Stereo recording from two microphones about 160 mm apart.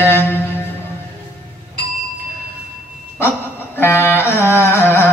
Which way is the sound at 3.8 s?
15° left (ahead or behind).